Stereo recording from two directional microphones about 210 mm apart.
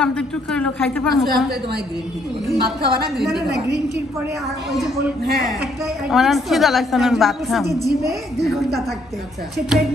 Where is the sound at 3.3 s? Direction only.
55° right (ahead or behind).